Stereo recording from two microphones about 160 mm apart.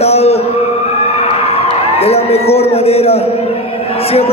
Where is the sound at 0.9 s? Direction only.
40° left (ahead or behind).